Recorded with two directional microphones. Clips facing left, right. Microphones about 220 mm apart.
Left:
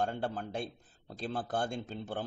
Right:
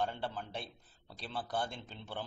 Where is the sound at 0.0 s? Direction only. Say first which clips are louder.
Left 4 dB; 45° left (ahead or behind).